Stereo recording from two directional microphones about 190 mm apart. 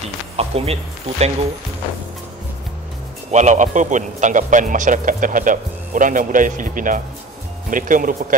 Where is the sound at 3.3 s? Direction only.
40° right (ahead or behind).